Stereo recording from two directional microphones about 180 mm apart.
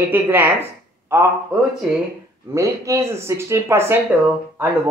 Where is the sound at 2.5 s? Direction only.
15° right (ahead or behind).